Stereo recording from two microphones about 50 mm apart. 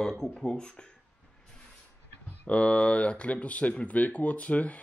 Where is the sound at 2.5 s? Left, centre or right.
Left.